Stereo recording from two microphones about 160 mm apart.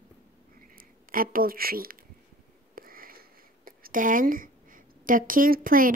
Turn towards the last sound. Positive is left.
turn(degrees=-60)  # may be behind; listen again after turning